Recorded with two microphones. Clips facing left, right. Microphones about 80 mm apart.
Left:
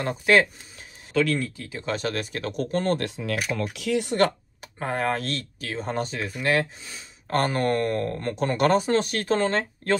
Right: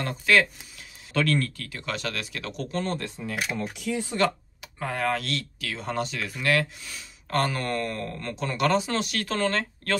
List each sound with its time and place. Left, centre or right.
1.1 s speech: centre
1.6 s speech: left
3.0 s speech: left
4.6 s speech: left